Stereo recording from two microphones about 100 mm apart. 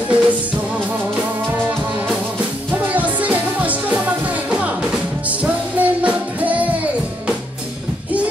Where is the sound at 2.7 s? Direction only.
15° right (ahead or behind).